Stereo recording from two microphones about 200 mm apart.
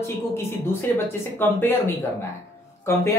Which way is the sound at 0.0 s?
10° left (ahead or behind).